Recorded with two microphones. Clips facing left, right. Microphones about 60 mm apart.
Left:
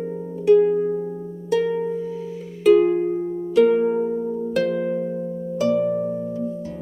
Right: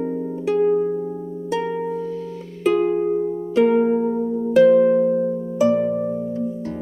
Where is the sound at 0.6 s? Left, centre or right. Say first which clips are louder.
Right 1 dB; centre.